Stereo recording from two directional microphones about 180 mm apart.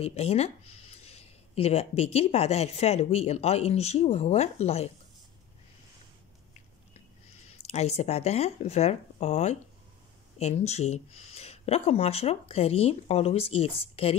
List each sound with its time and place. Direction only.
0.0 s speech: 35° left (ahead or behind)
7.4 s speech: 35° left (ahead or behind)